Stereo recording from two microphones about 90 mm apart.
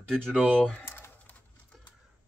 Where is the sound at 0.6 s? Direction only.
10° left (ahead or behind).